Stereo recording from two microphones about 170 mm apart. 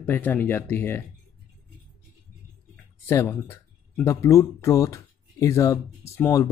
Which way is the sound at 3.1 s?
15° left (ahead or behind).